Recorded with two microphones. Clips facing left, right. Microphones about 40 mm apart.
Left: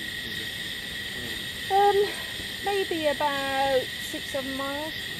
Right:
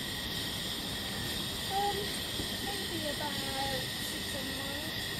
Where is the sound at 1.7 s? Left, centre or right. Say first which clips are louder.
Left 13 dB; left.